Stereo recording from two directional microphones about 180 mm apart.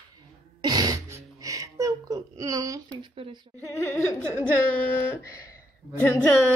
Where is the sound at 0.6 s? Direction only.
25° right (ahead or behind).